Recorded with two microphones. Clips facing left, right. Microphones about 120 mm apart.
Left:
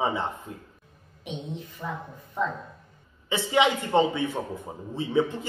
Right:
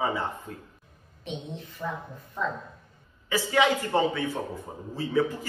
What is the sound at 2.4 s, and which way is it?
A man's voice, 15° left (ahead or behind).